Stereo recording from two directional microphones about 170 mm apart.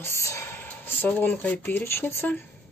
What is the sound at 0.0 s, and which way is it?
Speech, 15° left (ahead or behind).